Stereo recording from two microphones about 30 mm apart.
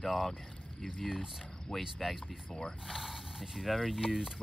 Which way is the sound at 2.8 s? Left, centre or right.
Centre.